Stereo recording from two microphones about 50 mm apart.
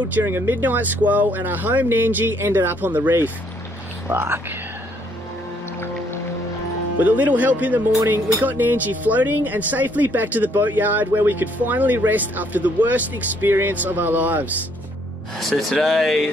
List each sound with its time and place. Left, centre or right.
0.1 s speech: right
4.1 s speech: right
7.0 s speech: right
15.3 s speech: centre